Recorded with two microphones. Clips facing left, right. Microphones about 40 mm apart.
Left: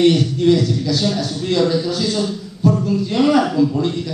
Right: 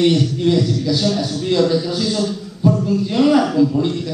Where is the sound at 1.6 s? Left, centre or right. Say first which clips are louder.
Even; centre.